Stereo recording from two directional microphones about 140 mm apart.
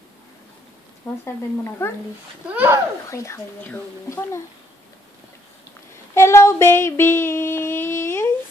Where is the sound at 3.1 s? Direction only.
20° left (ahead or behind).